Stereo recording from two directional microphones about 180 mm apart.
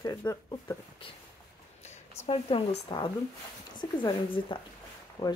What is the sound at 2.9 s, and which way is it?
Speech, 20° left (ahead or behind).